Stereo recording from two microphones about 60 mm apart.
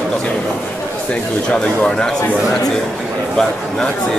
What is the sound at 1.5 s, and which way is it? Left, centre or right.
Speech, centre.